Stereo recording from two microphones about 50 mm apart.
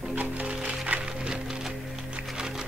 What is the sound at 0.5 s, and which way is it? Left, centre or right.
Music, right.